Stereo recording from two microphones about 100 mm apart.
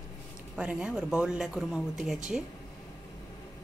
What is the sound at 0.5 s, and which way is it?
Speech, 10° right (ahead or behind).